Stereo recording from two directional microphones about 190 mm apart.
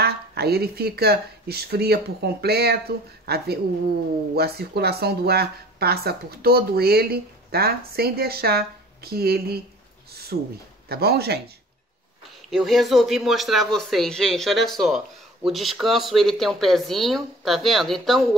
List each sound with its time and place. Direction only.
0.0 s speech: 55° right (ahead or behind)
12.4 s speech: centre (ahead or behind)